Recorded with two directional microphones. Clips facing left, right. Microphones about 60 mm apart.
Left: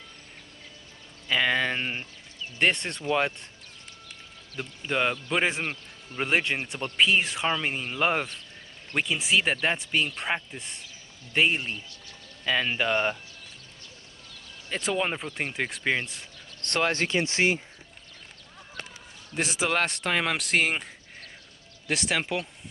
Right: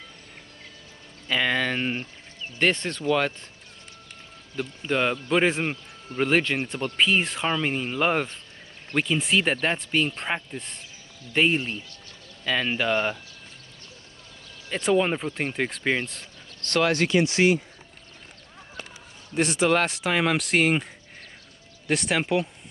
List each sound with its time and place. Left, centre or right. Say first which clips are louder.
1.3 s speech: right 1 dB; centre
4.6 s speech: right 3 dB; centre
14.7 s speech: right 6 dB; centre
16.7 s speech: right 4 dB; left
19.3 s speech: right 5 dB; centre